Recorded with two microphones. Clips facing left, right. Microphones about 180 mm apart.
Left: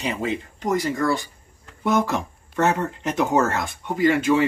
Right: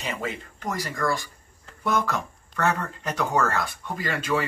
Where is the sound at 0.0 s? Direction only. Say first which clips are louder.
Left 6 dB; 20° left (ahead or behind).